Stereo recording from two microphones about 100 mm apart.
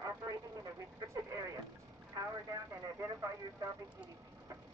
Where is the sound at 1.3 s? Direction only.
35° right (ahead or behind).